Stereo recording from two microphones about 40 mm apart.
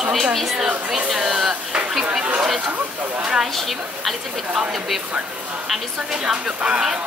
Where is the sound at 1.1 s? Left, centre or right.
Centre.